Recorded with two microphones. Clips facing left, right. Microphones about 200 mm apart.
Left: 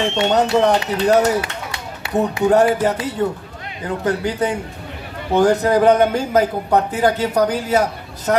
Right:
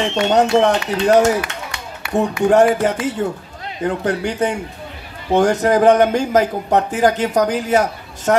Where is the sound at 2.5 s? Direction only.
75° right (ahead or behind).